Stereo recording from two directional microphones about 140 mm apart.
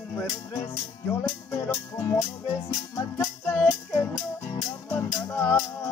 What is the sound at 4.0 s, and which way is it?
Music, 15° left (ahead or behind).